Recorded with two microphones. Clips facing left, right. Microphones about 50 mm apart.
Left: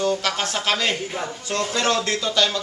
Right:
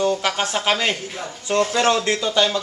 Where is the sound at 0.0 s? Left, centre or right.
Centre.